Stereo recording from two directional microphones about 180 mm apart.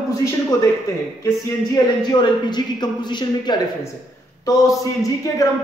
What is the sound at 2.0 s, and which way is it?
A man's voice, 25° left (ahead or behind).